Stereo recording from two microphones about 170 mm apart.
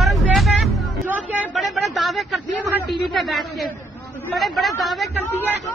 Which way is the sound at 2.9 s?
Centre (ahead or behind).